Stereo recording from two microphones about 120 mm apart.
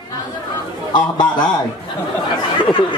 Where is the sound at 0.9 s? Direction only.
40° left (ahead or behind).